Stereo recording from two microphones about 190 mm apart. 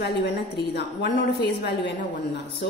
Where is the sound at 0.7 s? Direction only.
60° left (ahead or behind).